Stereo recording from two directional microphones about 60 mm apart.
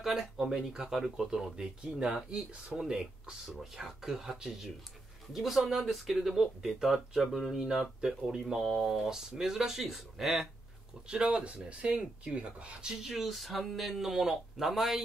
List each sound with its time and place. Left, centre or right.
0.0 s speech: centre
11.1 s speech: centre
12.9 s speech: centre